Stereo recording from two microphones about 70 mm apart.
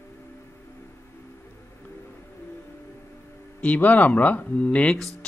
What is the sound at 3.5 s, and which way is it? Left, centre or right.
Speech, left.